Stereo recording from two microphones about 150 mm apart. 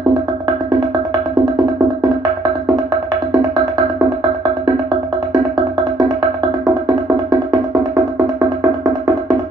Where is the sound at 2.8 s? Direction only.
25° right (ahead or behind).